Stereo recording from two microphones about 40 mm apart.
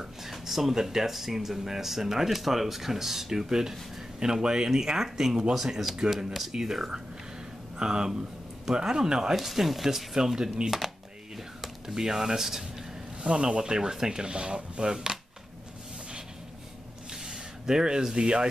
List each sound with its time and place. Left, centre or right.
0.0 s speech: centre
11.9 s speech: centre
13.2 s speech: right
17.1 s a sound: centre